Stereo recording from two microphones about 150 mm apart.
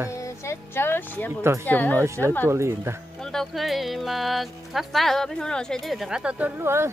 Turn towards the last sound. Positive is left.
turn(degrees=-15)  # may be behind; listen again after turning